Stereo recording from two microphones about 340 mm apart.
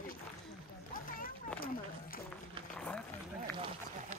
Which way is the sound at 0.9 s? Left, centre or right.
Left.